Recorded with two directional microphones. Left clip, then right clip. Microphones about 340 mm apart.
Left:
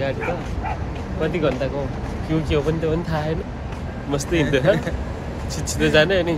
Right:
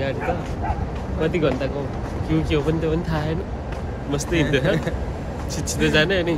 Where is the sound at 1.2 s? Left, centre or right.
Centre.